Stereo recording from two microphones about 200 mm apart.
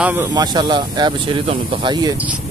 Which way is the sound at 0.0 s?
10° right (ahead or behind).